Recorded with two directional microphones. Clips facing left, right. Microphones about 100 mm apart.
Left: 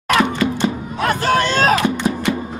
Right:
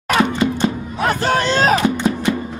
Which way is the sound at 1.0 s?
20° right (ahead or behind).